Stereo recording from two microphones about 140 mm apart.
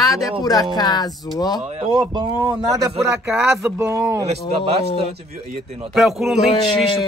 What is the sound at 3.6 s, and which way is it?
Speech, 20° right (ahead or behind).